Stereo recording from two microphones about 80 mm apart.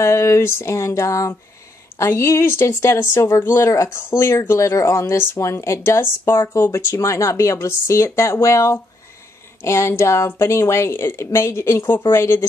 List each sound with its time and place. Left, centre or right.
0.0 s speech: left